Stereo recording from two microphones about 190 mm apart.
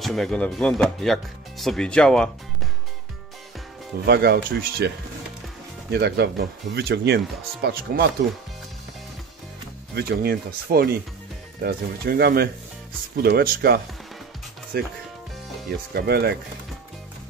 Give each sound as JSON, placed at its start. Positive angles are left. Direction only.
{"t": 0.0, "sound": "speech", "side_deg": 5}
{"t": 4.0, "sound": "speech", "side_deg": -55}
{"t": 9.9, "sound": "speech", "side_deg": -55}